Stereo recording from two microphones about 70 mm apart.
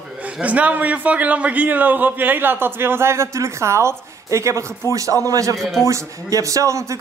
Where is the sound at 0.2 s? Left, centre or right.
Right.